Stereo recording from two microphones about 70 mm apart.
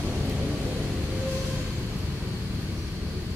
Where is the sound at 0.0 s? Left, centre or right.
Centre.